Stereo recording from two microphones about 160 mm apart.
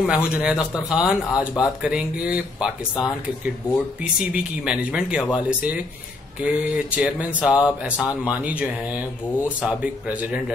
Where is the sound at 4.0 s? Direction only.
5° right (ahead or behind).